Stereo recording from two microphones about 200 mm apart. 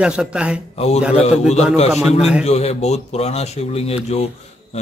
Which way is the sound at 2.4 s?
35° left (ahead or behind).